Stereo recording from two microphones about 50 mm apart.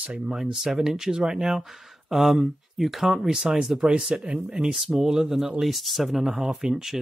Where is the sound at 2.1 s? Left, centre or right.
Centre.